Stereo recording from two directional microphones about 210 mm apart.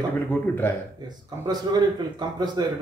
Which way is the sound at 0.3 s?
10° left (ahead or behind).